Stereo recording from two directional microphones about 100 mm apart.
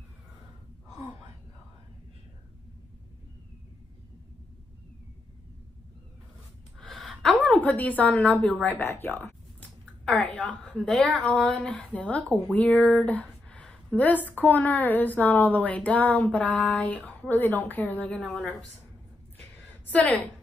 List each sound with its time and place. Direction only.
6.8 s gasp: 5° left (ahead or behind)
7.2 s a woman's voice: 15° left (ahead or behind)
19.5 s a sound: 15° left (ahead or behind)